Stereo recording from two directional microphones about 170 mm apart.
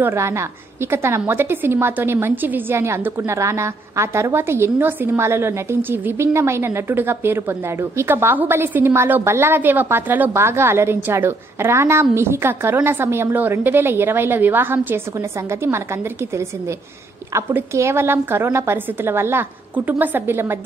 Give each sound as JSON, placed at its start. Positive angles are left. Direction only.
{"t": 0.0, "sound": "a woman's voice", "side_deg": -15}
{"t": 17.3, "sound": "a woman's voice", "side_deg": -15}